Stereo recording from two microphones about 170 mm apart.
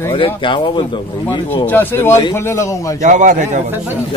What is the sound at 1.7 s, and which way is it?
Speech, 10° left (ahead or behind).